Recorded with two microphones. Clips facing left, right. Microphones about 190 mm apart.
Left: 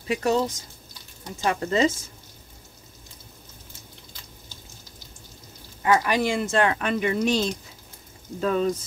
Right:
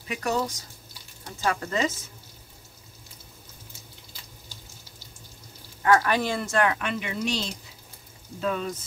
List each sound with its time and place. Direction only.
0.1 s speech: 25° left (ahead or behind)
5.8 s a woman's voice: 15° left (ahead or behind)
6.5 s speech: 30° left (ahead or behind)